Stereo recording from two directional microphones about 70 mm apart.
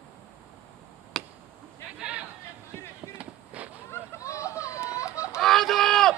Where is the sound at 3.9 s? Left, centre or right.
Left.